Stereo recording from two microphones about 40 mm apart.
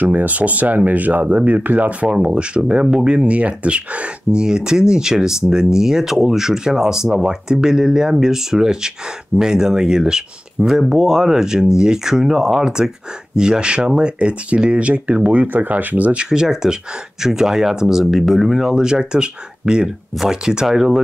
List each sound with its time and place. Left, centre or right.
0.0 s speech: right
2.0 s speech: right
4.4 s speech: centre
10.7 s speech: centre; by 15.4 s right
15.4 s speech: right
16.3 s speech: centre
18.7 s speech: centre